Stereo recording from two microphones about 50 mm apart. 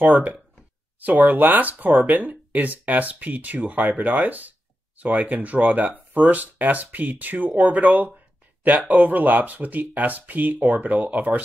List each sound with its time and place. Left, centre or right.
0.0 s speech: right